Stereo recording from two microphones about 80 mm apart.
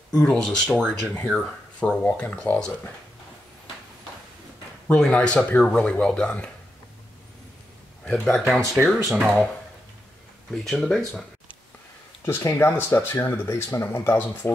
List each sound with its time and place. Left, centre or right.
0.2 s speech: centre
4.9 s speech: centre
8.0 s speech: centre
8.8 s speech: centre
10.5 s speech: centre
12.3 s speech: left